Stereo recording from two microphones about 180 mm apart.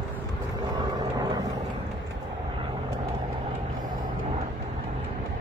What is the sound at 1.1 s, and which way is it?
Vehicle, 20° right (ahead or behind).